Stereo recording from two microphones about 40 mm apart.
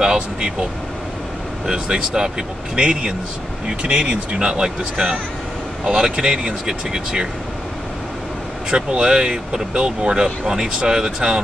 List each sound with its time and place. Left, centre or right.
0.0 s speech: centre
1.7 s speech: centre
8.6 s speech: centre